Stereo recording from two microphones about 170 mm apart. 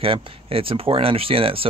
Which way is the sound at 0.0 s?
35° right (ahead or behind).